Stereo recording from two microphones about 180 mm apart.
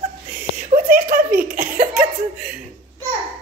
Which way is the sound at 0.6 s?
50° right (ahead or behind).